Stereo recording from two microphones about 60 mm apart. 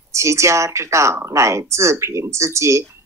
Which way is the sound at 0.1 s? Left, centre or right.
Right.